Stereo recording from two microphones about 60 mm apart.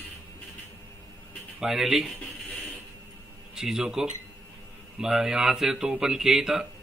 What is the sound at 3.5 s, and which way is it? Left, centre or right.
Speech, centre.